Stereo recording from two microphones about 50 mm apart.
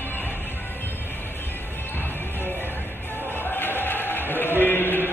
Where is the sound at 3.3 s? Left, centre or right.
Left.